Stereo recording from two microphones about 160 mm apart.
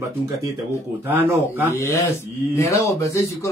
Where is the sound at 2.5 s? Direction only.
20° left (ahead or behind).